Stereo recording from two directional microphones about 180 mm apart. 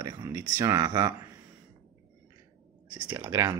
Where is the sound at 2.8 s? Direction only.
25° right (ahead or behind).